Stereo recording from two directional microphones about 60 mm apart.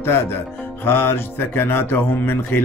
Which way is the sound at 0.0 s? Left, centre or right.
Left.